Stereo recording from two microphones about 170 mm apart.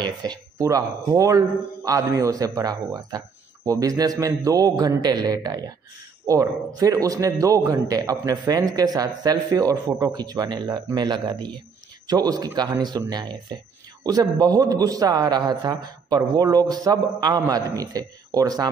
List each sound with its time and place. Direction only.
0.0 s a man's voice: 25° right (ahead or behind)